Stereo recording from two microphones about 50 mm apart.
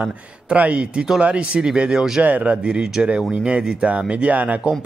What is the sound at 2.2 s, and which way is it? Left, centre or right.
Speech, right.